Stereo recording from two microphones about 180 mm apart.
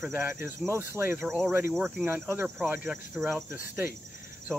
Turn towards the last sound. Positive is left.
turn(degrees=-15)  # may be behind; listen again after turning